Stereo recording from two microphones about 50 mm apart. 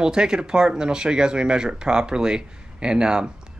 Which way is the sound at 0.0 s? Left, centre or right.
Centre.